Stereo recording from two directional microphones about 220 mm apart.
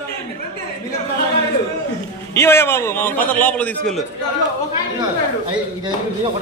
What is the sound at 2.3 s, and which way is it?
Speech, 10° left (ahead or behind).